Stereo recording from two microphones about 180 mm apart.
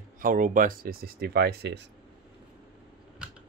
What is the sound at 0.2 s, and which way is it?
Speech, 50° right (ahead or behind).